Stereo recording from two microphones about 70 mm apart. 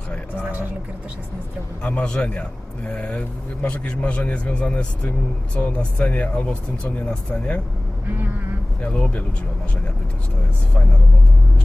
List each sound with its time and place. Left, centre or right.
1.8 s a man's voice: centre
8.8 s a man's voice: centre